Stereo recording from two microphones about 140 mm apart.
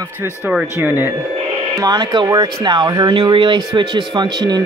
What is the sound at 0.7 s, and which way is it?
Speech, 15° right (ahead or behind).